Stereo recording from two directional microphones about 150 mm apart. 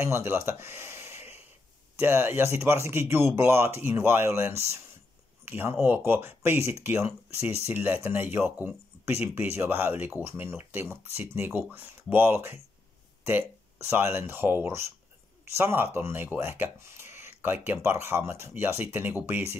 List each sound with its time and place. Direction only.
0.0 s speech: 15° right (ahead or behind)